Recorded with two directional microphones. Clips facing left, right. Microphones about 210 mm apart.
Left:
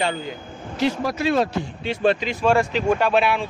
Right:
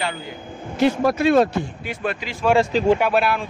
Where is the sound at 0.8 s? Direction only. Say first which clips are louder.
Right 5 dB; 55° right (ahead or behind).